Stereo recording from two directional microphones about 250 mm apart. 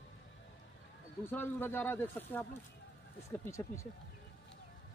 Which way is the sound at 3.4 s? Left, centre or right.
Centre.